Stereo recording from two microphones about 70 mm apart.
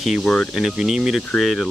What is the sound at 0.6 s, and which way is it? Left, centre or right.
Speech, centre.